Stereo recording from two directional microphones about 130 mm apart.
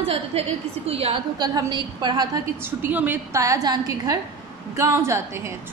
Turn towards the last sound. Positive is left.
turn(degrees=-20)  # may be behind; listen again after turning